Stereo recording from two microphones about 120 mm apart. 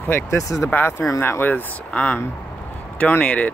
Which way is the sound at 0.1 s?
25° left (ahead or behind).